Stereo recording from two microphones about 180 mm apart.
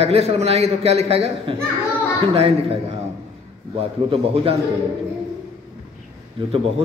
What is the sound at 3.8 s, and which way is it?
Speech, 30° right (ahead or behind).